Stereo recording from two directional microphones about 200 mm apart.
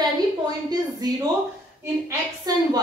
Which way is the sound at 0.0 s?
20° right (ahead or behind).